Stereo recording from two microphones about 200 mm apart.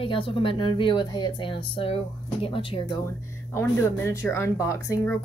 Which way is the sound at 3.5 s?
10° left (ahead or behind).